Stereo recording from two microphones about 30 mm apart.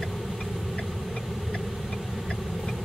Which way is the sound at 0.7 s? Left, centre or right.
Left.